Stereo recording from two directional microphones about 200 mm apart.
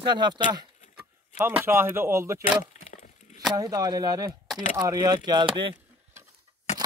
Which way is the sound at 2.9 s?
40° left (ahead or behind).